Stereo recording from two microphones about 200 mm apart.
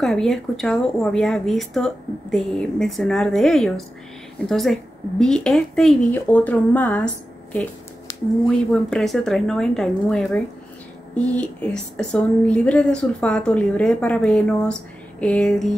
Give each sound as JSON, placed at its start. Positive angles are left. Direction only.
{"t": 0.0, "sound": "speech", "side_deg": 0}
{"t": 8.1, "sound": "a sound", "side_deg": 15}
{"t": 8.5, "sound": "speech", "side_deg": 0}